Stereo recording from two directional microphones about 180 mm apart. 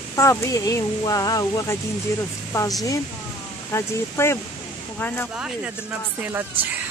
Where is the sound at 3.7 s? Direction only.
15° left (ahead or behind).